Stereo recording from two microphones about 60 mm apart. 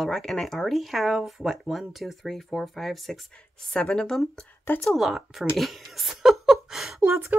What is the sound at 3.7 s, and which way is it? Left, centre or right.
Speech, centre.